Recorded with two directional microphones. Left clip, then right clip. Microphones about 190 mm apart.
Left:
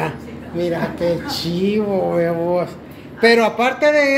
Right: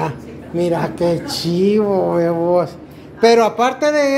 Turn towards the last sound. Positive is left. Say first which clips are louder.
# even
turn(degrees=-10)  # may be behind; listen again after turning